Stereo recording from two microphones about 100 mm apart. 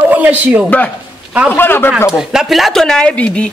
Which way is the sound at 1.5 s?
20° left (ahead or behind).